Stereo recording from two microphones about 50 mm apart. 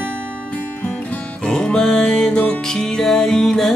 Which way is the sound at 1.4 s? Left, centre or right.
Centre.